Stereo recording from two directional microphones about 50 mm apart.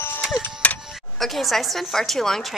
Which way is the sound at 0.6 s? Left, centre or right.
Left.